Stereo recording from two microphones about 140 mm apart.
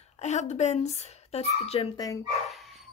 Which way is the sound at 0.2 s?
55° left (ahead or behind).